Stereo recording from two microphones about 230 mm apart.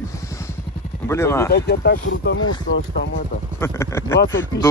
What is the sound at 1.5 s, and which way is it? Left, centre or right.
Speech, left.